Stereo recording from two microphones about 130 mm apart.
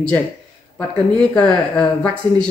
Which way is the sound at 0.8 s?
10° left (ahead or behind).